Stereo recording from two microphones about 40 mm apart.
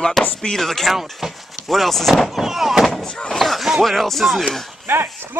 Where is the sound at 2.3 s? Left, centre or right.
Centre.